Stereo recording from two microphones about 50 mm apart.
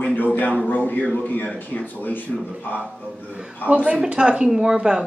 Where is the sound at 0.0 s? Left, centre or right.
Left.